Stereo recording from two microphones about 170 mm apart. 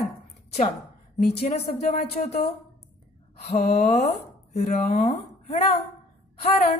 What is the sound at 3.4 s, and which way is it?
Speech, 40° left (ahead or behind).